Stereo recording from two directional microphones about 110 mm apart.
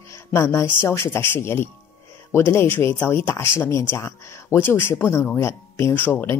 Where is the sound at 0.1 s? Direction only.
25° left (ahead or behind).